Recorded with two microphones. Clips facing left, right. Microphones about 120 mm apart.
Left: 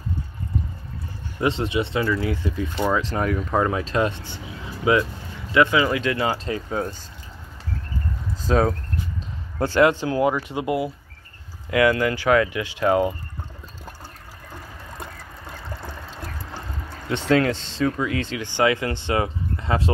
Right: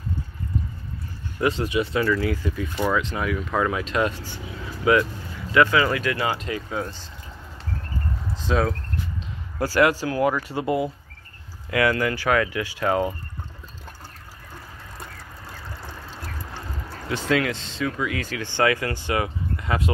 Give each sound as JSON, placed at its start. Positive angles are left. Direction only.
{"t": 1.4, "sound": "speech", "side_deg": 25}
{"t": 8.4, "sound": "speech", "side_deg": 40}
{"t": 9.6, "sound": "speech", "side_deg": 25}
{"t": 10.6, "sound": "speech", "side_deg": 10}
{"t": 11.7, "sound": "speech", "side_deg": 20}
{"t": 17.3, "sound": "speech", "side_deg": 30}